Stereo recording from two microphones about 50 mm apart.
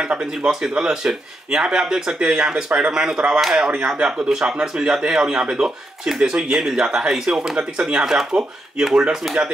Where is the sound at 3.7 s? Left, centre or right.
Right.